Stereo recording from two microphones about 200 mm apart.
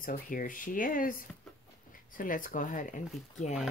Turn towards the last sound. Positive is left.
turn(degrees=35)  # may be behind; listen again after turning